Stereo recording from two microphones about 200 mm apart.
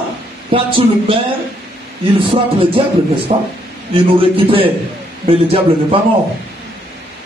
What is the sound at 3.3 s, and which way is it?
A man's voice, 30° right (ahead or behind).